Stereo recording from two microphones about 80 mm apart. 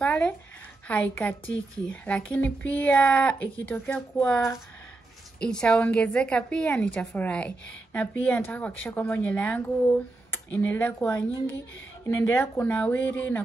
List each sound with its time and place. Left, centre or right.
0.0 s a sound: centre
0.8 s a woman's voice: centre
5.4 s a woman's voice: centre; by 11.1 s left
12.2 s a woman's voice: left